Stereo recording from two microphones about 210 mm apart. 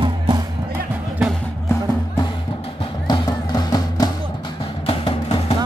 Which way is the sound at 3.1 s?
20° left (ahead or behind).